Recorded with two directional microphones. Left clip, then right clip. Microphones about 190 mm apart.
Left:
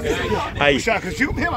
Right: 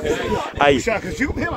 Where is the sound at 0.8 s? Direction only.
30° left (ahead or behind).